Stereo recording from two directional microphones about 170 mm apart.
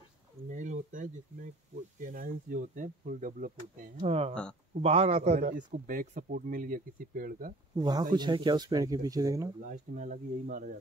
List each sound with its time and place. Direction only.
0.5 s a man's voice: 45° right (ahead or behind)
7.7 s speech: 25° right (ahead or behind)
9.7 s a man's voice: 50° right (ahead or behind)